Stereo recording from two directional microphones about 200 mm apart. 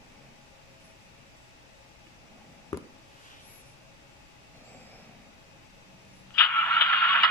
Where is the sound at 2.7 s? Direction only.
20° left (ahead or behind).